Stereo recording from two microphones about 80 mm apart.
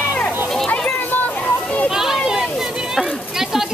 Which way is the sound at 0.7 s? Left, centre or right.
Left.